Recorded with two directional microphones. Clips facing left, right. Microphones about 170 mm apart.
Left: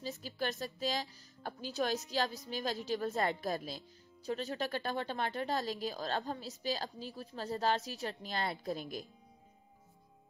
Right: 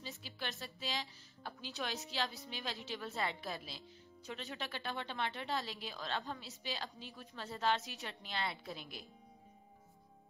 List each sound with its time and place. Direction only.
0.0 s a woman's voice: 40° left (ahead or behind)